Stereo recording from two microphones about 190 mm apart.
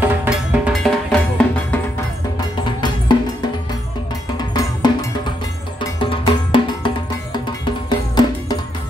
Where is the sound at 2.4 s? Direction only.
25° left (ahead or behind).